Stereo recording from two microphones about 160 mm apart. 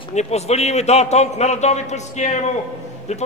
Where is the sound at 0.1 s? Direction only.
45° left (ahead or behind).